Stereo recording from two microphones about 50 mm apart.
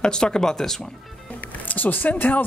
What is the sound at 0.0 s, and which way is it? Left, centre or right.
Speech, centre.